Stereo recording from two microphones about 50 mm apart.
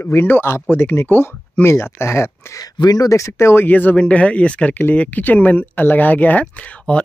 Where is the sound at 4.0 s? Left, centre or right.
Left.